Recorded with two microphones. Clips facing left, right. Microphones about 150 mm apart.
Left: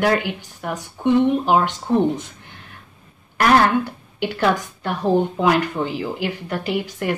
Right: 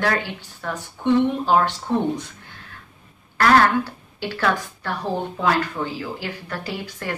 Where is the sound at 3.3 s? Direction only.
20° left (ahead or behind).